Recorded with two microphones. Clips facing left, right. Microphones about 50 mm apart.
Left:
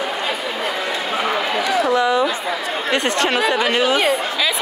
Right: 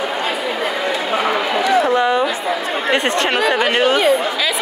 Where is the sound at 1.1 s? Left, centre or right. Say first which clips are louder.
Right 2 dB; centre.